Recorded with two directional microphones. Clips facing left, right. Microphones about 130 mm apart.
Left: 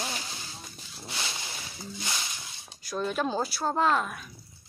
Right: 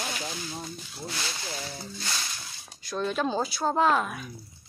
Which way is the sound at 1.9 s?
15° left (ahead or behind).